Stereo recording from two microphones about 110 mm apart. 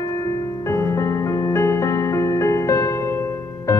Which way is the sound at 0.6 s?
25° left (ahead or behind).